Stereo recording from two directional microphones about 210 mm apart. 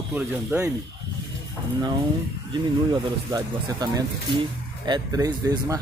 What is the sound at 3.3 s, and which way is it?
Speech, 20° right (ahead or behind).